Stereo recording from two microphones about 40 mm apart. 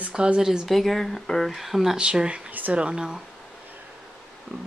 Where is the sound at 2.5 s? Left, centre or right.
Right.